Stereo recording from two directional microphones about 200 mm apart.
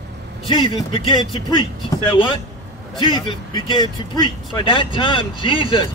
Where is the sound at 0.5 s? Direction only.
25° left (ahead or behind).